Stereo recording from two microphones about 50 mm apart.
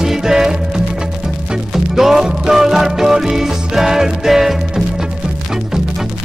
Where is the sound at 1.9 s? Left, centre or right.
Centre.